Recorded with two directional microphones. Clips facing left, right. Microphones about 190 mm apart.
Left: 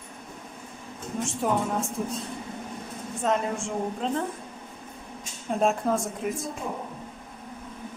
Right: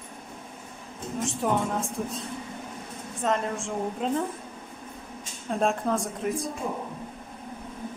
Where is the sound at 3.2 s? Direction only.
Centre (ahead or behind).